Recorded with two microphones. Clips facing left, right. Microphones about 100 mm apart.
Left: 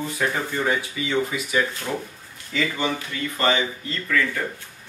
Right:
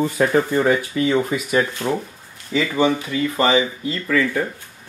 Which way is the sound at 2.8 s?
10° right (ahead or behind).